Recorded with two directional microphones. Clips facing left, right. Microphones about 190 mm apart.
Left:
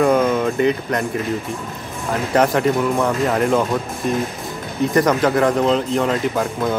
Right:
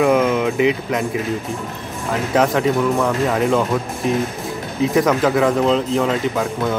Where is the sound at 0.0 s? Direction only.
5° right (ahead or behind).